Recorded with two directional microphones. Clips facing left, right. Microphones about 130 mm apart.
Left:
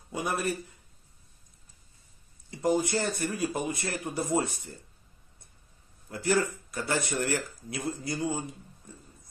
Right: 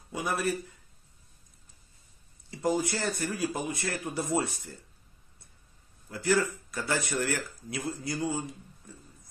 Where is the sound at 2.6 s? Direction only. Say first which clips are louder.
Left 2 dB; 20° left (ahead or behind).